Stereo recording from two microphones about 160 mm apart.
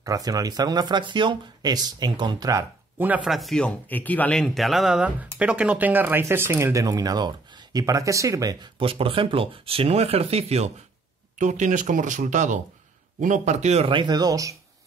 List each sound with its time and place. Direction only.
0.0 s speech: 20° right (ahead or behind)
3.0 s speech: 10° right (ahead or behind)
8.8 s speech: 35° right (ahead or behind)